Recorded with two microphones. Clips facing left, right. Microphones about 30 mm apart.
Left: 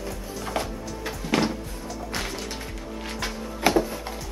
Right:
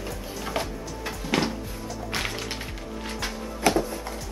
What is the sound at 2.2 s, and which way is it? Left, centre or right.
Music, right.